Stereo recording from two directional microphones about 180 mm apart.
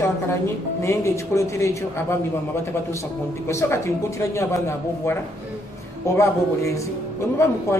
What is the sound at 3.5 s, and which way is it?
Speech, 15° left (ahead or behind).